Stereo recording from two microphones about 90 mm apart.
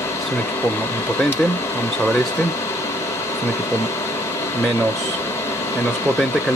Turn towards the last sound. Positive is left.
turn(degrees=25)  # may be behind; listen again after turning